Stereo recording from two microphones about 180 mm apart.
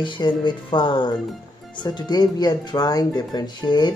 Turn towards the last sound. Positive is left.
turn(degrees=25)  # may be behind; listen again after turning